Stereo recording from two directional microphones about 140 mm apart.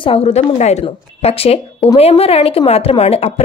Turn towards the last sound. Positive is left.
turn(degrees=45)  # may be behind; listen again after turning